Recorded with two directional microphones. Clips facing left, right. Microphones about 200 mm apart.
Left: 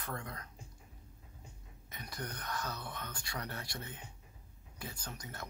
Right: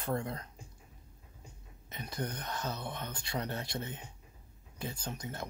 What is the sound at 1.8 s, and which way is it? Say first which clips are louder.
Speech: right 6 dB; 25° right (ahead or behind).